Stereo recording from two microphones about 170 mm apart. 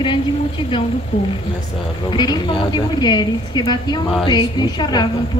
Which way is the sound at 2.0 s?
25° left (ahead or behind).